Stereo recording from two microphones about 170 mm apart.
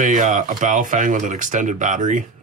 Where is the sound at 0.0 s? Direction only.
45° right (ahead or behind).